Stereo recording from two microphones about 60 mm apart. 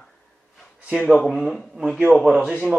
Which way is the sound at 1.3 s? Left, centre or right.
Centre.